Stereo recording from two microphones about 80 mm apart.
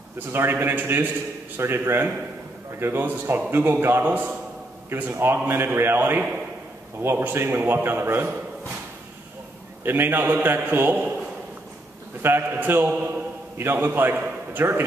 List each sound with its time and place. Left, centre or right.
0.3 s a man's voice: right
9.8 s a man's voice: right
12.2 s a man's voice: right